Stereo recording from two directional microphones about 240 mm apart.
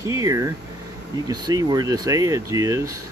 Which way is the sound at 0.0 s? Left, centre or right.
Centre.